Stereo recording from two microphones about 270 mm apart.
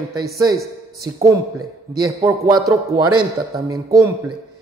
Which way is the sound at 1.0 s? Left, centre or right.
Centre.